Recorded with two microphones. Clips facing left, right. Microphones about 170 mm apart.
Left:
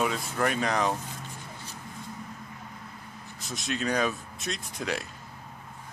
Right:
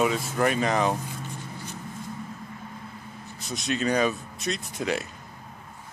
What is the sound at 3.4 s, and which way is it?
Speech, centre (ahead or behind).